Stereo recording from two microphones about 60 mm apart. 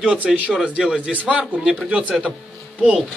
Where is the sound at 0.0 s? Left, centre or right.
Centre.